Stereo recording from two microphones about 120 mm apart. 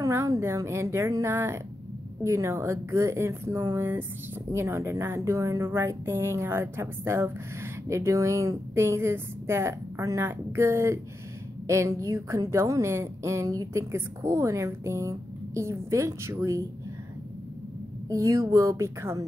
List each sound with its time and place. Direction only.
0.0 s a woman's voice: 25° right (ahead or behind)
18.1 s a woman's voice: 25° right (ahead or behind)